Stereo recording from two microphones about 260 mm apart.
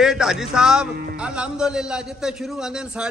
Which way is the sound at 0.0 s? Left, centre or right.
Centre.